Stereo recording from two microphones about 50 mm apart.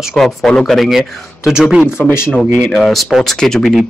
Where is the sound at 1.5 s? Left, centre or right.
Centre.